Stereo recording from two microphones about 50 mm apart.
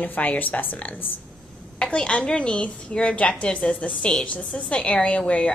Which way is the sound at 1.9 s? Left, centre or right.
Centre.